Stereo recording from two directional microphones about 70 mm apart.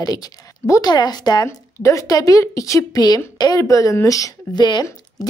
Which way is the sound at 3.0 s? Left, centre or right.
Left.